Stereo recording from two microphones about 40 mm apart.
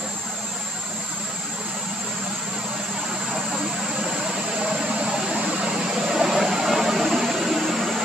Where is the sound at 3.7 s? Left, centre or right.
Right.